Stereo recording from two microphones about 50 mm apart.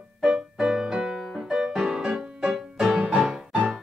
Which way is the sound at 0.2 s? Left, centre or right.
Centre.